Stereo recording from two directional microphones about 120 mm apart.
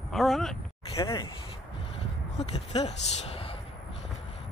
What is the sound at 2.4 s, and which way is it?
Speech, 65° left (ahead or behind).